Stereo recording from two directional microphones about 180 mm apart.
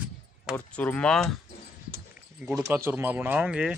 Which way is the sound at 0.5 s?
10° left (ahead or behind).